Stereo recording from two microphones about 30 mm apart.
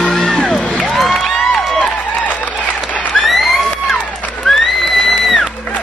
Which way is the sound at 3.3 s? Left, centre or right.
Centre.